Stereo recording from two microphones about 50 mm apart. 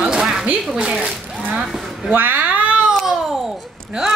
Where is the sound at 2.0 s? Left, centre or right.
Right.